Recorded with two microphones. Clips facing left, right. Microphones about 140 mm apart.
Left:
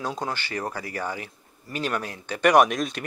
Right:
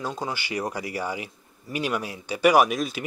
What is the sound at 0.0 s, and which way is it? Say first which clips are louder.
Speech: left 1 dB; centre (ahead or behind).